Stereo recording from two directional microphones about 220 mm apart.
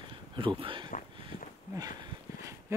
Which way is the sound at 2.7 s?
15° right (ahead or behind).